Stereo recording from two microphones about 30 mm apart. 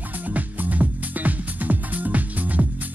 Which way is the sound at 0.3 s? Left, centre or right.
Right.